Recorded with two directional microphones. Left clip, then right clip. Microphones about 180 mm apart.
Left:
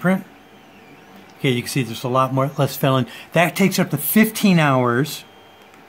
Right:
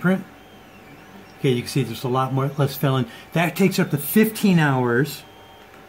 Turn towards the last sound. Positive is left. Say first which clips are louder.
# left 3 dB
turn(degrees=45)  # may be behind; listen again after turning